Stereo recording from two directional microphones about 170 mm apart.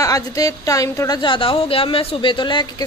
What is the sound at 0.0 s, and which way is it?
A woman's voice, 20° left (ahead or behind).